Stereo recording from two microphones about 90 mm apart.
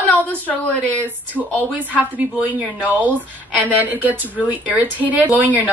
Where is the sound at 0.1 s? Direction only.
20° left (ahead or behind).